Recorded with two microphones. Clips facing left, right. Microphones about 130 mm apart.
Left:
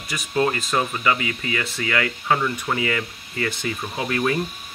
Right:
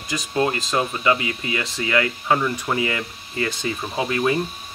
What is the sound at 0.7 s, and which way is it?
Speech, 25° right (ahead or behind).